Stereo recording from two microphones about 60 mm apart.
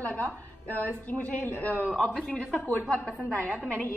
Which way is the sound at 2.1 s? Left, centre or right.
Centre.